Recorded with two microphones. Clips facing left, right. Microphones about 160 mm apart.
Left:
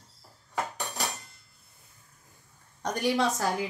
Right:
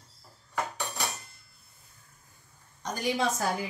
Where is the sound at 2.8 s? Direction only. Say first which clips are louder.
Left 3 dB; 70° left (ahead or behind).